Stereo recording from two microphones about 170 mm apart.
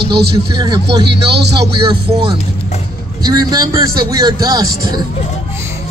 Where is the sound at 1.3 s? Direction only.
80° right.